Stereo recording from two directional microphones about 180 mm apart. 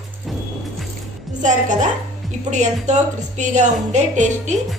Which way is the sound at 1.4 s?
45° right (ahead or behind).